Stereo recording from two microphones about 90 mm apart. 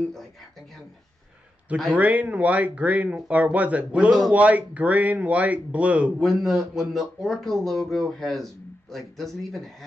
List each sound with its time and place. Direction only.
2.0 s speech: 15° right (ahead or behind)
6.1 s speech: centre (ahead or behind)